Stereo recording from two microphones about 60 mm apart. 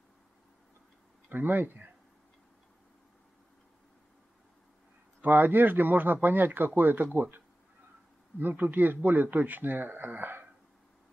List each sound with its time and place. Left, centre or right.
1.3 s speech: right
5.2 s speech: right